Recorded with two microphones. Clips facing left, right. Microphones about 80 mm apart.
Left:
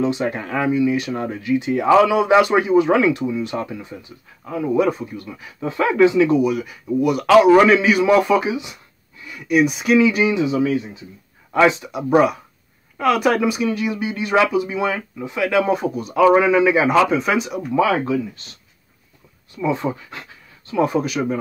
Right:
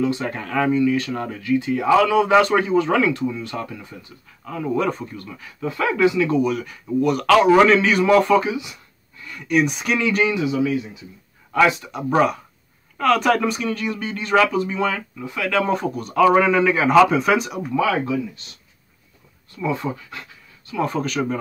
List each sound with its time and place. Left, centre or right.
0.0 s a man's voice: left; by 10.2 s centre
10.2 s speech: left
12.1 s speech: centre
15.6 s a man's voice: centre
17.7 s speech: left
19.5 s speech: left
20.8 s speech: centre